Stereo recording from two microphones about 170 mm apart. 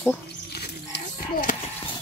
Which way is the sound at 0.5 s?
70° left (ahead or behind).